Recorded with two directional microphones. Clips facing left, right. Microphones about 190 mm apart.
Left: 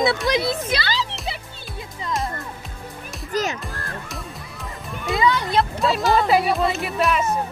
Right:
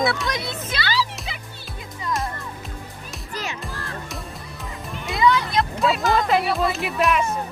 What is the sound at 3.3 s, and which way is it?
Music, 40° left (ahead or behind).